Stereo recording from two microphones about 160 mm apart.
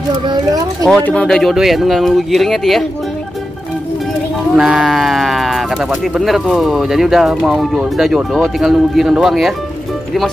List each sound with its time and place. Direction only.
0.3 s speech: 25° right (ahead or behind)
0.8 s speech: 5° left (ahead or behind)
4.6 s speech: 5° right (ahead or behind)